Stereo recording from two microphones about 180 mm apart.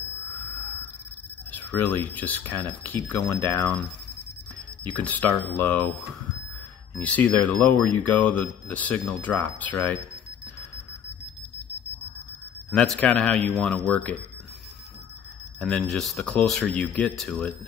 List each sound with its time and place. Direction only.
1.5 s speech: 10° left (ahead or behind)
4.9 s speech: 10° left (ahead or behind)
7.0 s speech: 10° left (ahead or behind)
12.7 s speech: 5° left (ahead or behind)
15.7 s speech: centre (ahead or behind)